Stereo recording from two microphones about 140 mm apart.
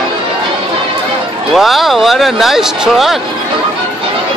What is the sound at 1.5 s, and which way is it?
Speech, centre (ahead or behind).